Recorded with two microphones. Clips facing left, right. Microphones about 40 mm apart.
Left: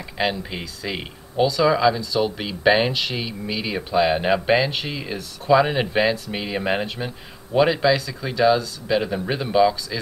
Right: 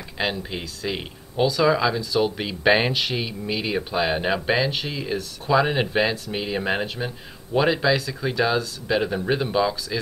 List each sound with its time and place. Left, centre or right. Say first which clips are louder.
0.4 s speech: even; centre